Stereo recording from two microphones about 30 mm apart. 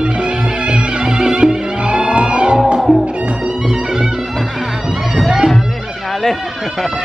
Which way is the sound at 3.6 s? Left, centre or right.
Right.